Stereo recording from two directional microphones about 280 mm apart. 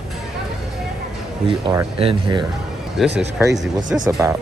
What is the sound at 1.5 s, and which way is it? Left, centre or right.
Speech, centre.